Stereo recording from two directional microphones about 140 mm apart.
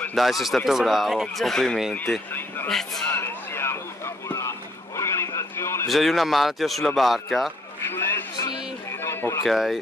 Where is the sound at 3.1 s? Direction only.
15° left (ahead or behind).